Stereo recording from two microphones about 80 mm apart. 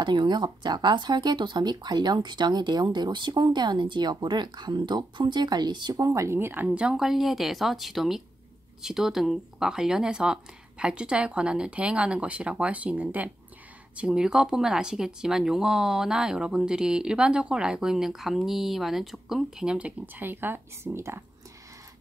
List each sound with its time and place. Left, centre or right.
0.0 s speech: right; by 19.9 s centre
20.2 s speech: right